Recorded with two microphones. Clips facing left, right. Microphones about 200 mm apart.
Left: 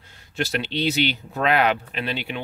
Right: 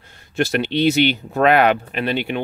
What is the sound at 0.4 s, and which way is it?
Speech, 55° right (ahead or behind).